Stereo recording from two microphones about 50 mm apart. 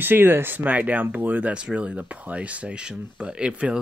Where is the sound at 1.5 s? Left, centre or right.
Right.